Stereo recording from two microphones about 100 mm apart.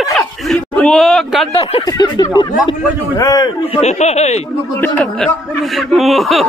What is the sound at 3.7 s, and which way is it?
Speech, 90° left.